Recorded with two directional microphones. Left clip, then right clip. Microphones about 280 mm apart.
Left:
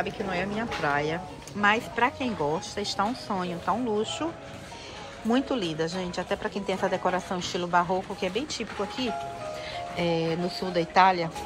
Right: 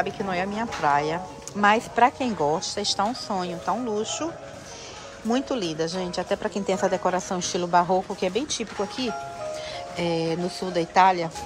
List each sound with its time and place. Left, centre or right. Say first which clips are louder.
0.6 s a woman's voice: right 6 dB; centre
5.3 s a woman's voice: right 1 dB; centre